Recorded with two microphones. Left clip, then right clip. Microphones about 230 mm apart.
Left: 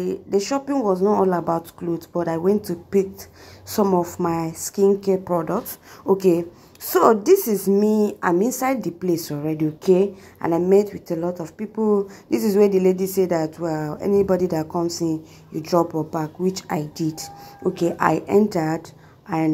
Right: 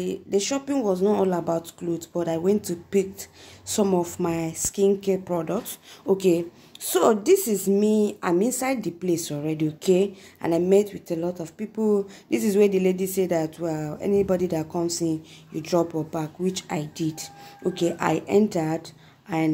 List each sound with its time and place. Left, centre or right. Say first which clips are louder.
0.3 s speech: left 3 dB; centre